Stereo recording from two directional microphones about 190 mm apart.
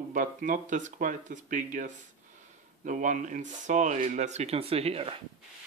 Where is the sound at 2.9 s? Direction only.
40° right (ahead or behind).